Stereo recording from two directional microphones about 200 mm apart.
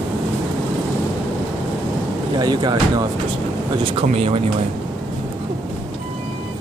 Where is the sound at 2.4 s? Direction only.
20° right (ahead or behind).